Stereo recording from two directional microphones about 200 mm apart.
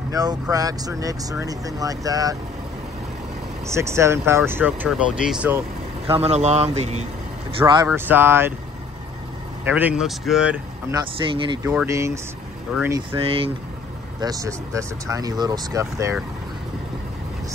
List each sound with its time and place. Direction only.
0.1 s speech: 20° right (ahead or behind)
3.6 s speech: 15° right (ahead or behind)
6.0 s speech: 30° right (ahead or behind)
7.5 s speech: 20° right (ahead or behind)
9.7 s speech: 10° right (ahead or behind)
11.0 s speech: 25° right (ahead or behind)
11.7 s speech: 10° right (ahead or behind)
13.1 s speech: 25° right (ahead or behind)